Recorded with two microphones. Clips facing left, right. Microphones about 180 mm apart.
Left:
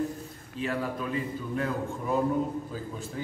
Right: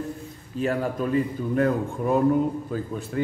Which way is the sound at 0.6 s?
45° right (ahead or behind).